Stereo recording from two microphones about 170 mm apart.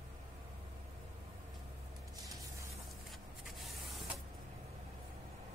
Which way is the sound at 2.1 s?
20° right (ahead or behind).